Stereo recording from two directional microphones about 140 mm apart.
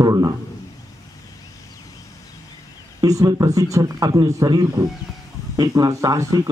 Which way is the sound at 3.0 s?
25° right (ahead or behind).